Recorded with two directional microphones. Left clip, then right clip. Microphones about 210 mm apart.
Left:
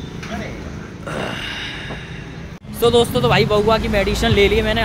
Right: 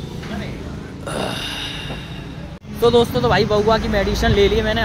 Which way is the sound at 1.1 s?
10° right (ahead or behind).